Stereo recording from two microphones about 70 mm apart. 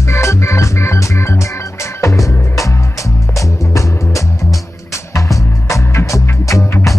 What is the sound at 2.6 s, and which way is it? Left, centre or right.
Music, left.